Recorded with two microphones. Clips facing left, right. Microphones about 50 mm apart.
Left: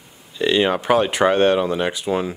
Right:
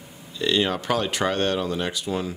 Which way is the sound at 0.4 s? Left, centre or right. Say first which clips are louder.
Left 5 dB; left.